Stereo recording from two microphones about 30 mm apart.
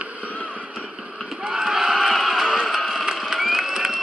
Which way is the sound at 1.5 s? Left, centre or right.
Right.